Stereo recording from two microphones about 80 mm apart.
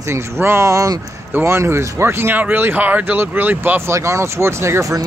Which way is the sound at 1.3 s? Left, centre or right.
Right.